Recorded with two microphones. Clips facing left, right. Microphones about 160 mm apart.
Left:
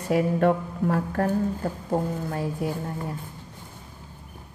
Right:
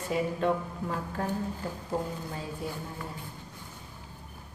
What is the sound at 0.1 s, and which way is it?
A woman's voice, 60° left (ahead or behind).